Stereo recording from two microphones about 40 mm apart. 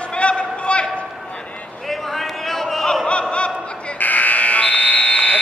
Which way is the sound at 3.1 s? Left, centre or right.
Left.